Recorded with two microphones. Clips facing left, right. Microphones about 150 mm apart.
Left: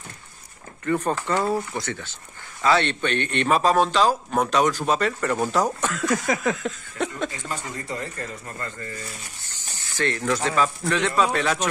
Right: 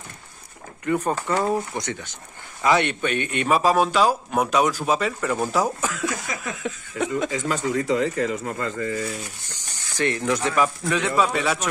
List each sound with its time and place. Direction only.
0.8 s speech: 10° right (ahead or behind)
6.5 s a sound: 5° right (ahead or behind)
7.2 s speech: 90° right
9.9 s speech: 15° right (ahead or behind)
10.8 s speech: 5° right (ahead or behind)